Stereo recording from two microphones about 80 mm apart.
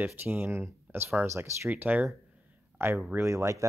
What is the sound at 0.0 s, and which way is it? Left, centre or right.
Speech, right.